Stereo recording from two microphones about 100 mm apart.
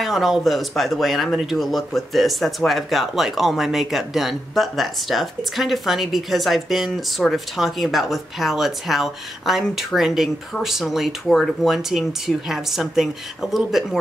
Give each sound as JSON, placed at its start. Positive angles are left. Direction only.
{"t": 0.0, "sound": "speech", "side_deg": 0}